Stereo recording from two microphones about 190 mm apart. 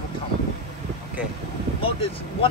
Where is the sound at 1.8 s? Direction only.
30° left (ahead or behind).